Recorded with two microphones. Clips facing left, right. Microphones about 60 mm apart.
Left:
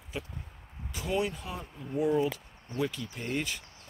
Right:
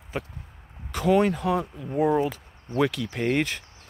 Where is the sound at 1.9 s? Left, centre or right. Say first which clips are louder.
Right 5 dB; right.